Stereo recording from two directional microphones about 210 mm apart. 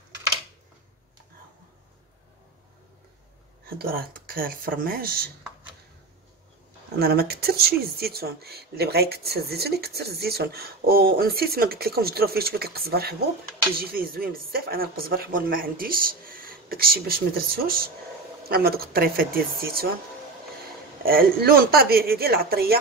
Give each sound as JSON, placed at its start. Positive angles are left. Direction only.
{"t": 3.6, "sound": "speech", "side_deg": -45}
{"t": 7.0, "sound": "speech", "side_deg": -45}
{"t": 21.0, "sound": "speech", "side_deg": -45}